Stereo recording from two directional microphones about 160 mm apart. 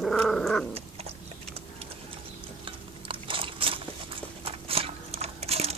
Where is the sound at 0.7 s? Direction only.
40° right (ahead or behind).